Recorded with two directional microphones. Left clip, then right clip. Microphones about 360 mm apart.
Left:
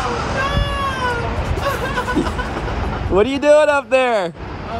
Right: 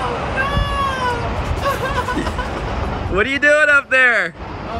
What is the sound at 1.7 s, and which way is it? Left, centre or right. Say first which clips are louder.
Speech: right 1 dB; centre.